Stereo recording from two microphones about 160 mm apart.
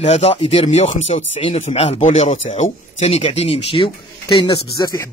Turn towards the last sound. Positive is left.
turn(degrees=25)  # may be behind; listen again after turning